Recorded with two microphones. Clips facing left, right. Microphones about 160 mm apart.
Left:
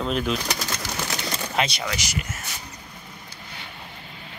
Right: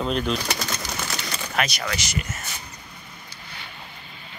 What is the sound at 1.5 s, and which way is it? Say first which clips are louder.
Speech: even; 25° left (ahead or behind).